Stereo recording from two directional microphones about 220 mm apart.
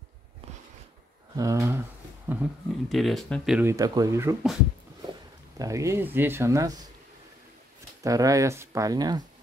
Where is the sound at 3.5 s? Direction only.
15° right (ahead or behind).